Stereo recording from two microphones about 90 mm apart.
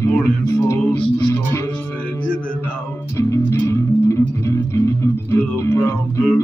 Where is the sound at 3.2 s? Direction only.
35° left (ahead or behind).